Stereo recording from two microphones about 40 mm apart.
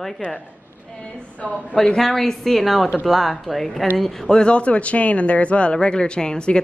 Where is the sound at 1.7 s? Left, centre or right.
Centre.